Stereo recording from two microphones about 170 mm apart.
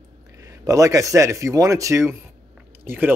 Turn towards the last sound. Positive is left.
turn(degrees=-10)  # may be behind; listen again after turning